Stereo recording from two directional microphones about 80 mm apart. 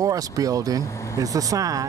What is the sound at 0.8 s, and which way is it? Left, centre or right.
Speech, left.